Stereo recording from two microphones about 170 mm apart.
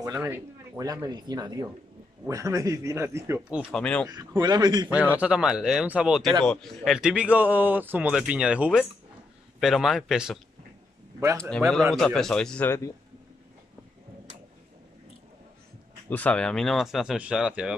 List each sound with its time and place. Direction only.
0.0 s speech: 15° right (ahead or behind)
3.7 s speech: 5° left (ahead or behind)
4.1 s speech: 20° right (ahead or behind)
4.8 s speech: 10° right (ahead or behind)
11.5 s speech: 5° left (ahead or behind)
16.1 s speech: 10° left (ahead or behind)